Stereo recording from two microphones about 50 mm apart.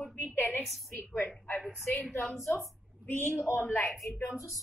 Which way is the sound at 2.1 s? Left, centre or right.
Left.